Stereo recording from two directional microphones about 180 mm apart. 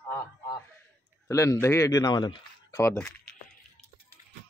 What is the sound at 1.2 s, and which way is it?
Speech, 15° left (ahead or behind).